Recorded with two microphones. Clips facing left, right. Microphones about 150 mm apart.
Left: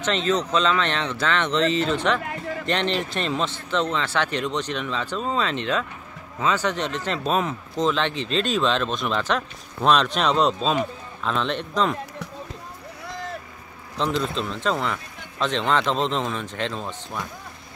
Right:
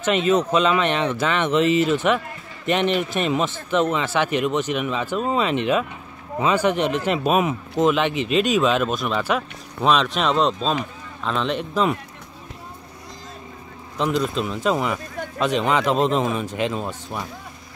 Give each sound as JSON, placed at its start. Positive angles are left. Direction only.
{"t": 0.0, "sound": "speech", "side_deg": -10}
{"t": 13.9, "sound": "a man's voice", "side_deg": -5}